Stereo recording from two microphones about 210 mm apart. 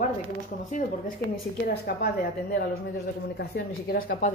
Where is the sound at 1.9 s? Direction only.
50° left (ahead or behind).